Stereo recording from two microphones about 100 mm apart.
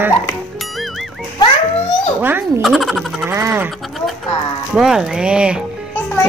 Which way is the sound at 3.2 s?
20° right (ahead or behind).